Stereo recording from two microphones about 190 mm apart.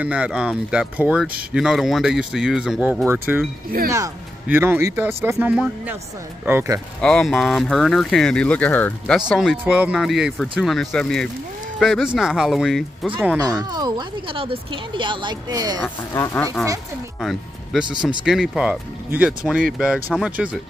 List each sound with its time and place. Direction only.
0.0 s speech: 5° right (ahead or behind)
7.0 s speech: 5° left (ahead or behind)
13.4 s speech: 20° right (ahead or behind)
15.8 s speech: 15° left (ahead or behind)
17.2 s speech: centre (ahead or behind)